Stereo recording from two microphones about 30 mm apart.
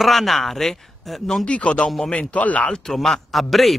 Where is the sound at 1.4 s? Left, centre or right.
Left.